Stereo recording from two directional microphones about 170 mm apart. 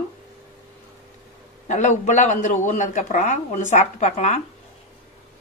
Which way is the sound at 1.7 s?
45° left (ahead or behind).